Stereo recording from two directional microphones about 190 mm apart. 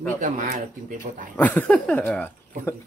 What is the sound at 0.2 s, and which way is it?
Speech, 45° right (ahead or behind).